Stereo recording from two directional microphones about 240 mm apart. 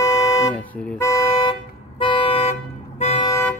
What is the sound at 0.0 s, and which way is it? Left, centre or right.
Toot, centre.